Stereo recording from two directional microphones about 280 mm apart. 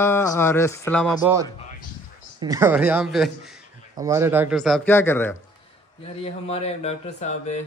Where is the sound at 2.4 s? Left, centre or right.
Centre.